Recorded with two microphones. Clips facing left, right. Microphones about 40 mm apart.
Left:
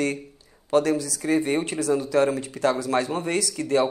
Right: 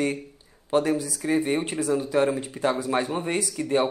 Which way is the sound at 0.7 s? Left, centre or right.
Centre.